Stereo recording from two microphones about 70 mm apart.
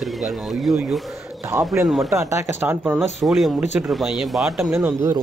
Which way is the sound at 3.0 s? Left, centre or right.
Centre.